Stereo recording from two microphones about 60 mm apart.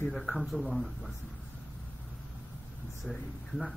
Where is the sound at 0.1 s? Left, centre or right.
Centre.